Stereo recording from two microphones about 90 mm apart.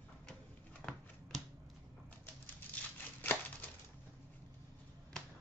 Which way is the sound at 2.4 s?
20° left (ahead or behind).